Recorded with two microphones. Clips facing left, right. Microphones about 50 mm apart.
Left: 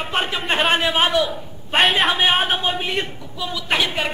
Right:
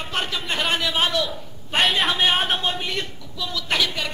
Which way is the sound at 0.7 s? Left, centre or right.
Left.